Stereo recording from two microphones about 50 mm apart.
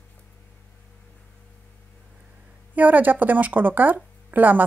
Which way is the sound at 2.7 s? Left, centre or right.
Right.